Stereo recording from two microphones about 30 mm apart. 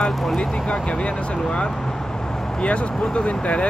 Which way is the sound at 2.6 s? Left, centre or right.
Left.